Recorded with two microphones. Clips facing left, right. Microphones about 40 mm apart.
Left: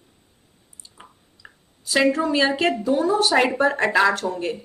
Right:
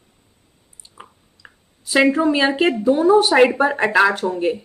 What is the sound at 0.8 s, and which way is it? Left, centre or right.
Chewing, centre.